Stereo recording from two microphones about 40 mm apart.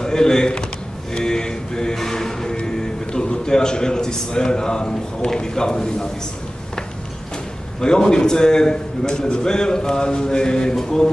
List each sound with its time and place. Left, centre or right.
0.0 s a sound: centre
2.6 s a man's voice: centre
7.8 s a man's voice: centre
10.8 s mantra: centre